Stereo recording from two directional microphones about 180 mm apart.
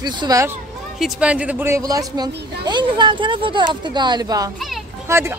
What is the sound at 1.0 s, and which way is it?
Speech, 5° right (ahead or behind).